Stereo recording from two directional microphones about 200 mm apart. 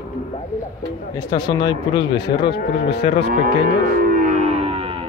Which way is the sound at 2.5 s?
55° left (ahead or behind).